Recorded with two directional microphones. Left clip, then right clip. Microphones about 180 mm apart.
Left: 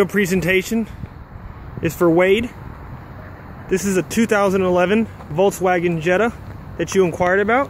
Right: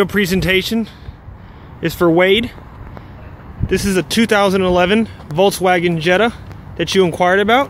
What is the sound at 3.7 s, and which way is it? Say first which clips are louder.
Speech: right 3 dB; 10° right (ahead or behind).